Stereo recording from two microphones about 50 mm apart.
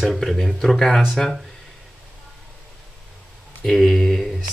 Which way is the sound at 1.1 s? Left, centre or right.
Centre.